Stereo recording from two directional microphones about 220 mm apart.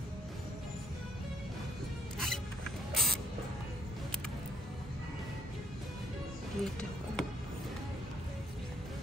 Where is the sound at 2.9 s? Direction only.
Centre (ahead or behind).